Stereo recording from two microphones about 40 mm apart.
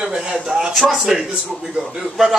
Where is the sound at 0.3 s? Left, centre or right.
Centre.